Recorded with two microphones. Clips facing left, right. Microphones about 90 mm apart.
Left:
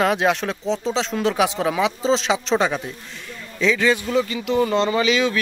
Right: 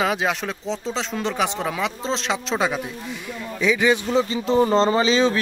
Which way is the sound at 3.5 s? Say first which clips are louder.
Even; 15° right (ahead or behind).